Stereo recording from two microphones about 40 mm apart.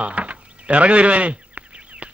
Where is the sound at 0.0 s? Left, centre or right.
Right.